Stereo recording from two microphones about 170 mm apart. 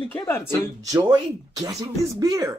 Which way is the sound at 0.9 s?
20° right (ahead or behind).